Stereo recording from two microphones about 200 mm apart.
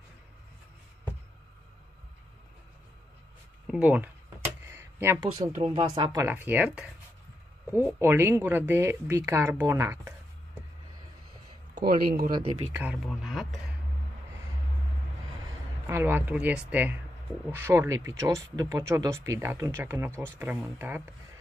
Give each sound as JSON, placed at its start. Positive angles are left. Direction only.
{"t": 3.6, "sound": "speech", "side_deg": -5}
{"t": 4.6, "sound": "a sound", "side_deg": -10}
{"t": 5.6, "sound": "speech", "side_deg": -25}
{"t": 11.8, "sound": "speech", "side_deg": -50}
{"t": 12.3, "sound": "speech", "side_deg": -25}
{"t": 12.7, "sound": "speech", "side_deg": -10}
{"t": 15.9, "sound": "speech", "side_deg": -10}